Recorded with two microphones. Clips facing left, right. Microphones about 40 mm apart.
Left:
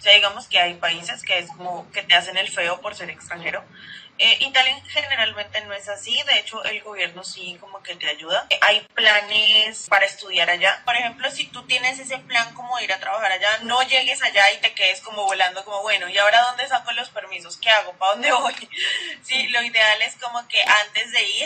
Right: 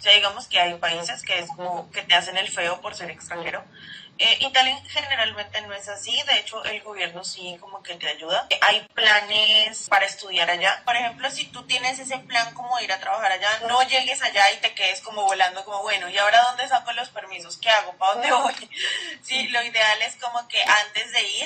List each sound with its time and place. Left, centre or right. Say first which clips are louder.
0.0 s speech: left 3 dB; left
4.2 s speech: left 2 dB; left
6.0 s speech: left 2 dB; left
8.0 s speech: left 2 dB; left
17.1 s speech: left 4 dB; left
18.0 s speech: left 1 dB; left